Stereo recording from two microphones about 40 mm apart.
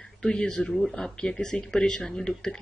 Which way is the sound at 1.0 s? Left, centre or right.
Centre.